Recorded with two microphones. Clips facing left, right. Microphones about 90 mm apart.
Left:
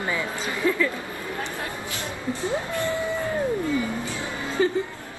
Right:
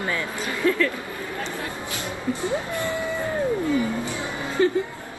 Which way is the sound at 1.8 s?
20° right (ahead or behind).